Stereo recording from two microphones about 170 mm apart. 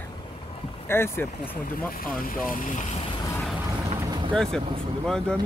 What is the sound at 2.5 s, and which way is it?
Speech, 50° left (ahead or behind).